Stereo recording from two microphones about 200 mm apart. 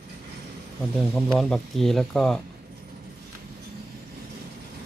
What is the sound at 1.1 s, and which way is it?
Speech, centre (ahead or behind).